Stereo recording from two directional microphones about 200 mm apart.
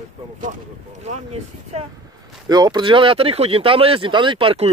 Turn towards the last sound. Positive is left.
turn(degrees=-30)  # may be behind; listen again after turning